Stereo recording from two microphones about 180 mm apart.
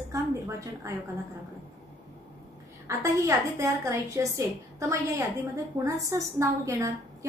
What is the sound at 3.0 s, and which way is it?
A woman's voice, 15° right (ahead or behind).